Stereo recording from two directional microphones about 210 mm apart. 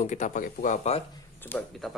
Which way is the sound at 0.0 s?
35° left (ahead or behind).